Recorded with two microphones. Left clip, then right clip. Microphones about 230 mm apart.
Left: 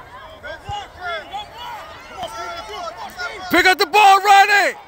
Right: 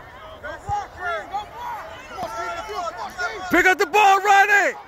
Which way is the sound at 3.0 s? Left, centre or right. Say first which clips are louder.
Right 1 dB; left.